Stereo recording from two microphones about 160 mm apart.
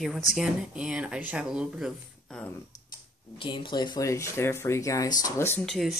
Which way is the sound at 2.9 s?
30° left (ahead or behind).